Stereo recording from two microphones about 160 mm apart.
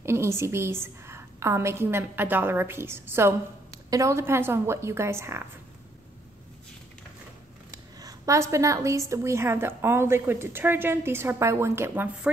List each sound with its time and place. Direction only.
0.0 s a woman's voice: 15° right (ahead or behind)
7.7 s a woman's voice: 20° right (ahead or behind)